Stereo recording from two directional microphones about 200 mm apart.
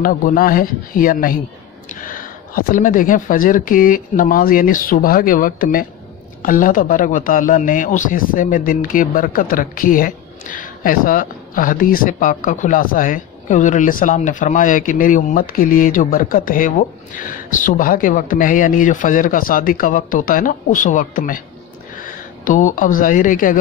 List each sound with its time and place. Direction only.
0.0 s a man's voice: 45° left (ahead or behind)